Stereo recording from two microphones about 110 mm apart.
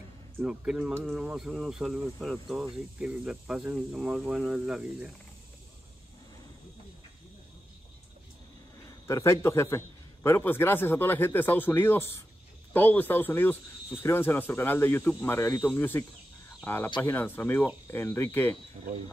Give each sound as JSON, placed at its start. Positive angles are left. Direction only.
{"t": 0.4, "sound": "speech", "side_deg": -10}
{"t": 9.0, "sound": "a man's voice", "side_deg": 25}